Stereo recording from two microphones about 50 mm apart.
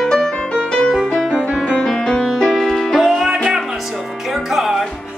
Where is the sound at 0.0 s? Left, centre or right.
Centre.